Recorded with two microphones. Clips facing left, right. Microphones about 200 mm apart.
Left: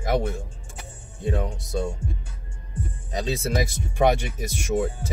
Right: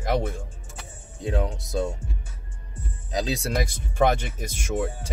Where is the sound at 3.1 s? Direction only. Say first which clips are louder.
Left 1 dB; centre (ahead or behind).